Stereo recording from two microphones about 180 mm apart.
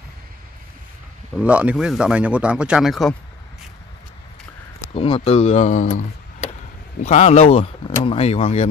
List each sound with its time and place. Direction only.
1.3 s speech: 5° right (ahead or behind)
4.9 s speech: 35° left (ahead or behind)